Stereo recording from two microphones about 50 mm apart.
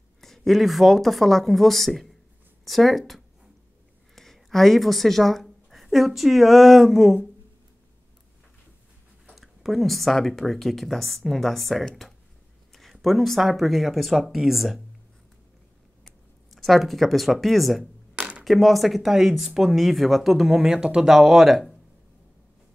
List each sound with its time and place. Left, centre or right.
0.2 s speech: centre
9.3 s speech: centre
12.0 s a sound: centre
12.7 s speech: centre
16.5 s speech: centre
18.1 s a sound: centre
18.4 s speech: centre
20.7 s speech: centre
21.1 s speech: centre